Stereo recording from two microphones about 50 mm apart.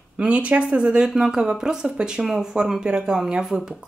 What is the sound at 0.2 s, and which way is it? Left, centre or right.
Speech, right.